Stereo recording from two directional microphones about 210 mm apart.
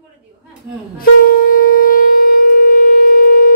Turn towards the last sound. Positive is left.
turn(degrees=45)  # may be behind; listen again after turning